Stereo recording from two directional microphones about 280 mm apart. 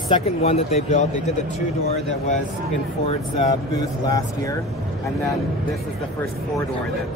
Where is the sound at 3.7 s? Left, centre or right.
Centre.